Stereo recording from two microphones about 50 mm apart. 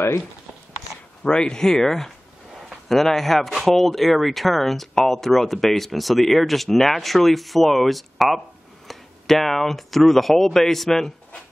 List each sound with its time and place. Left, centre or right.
1.2 s speech: centre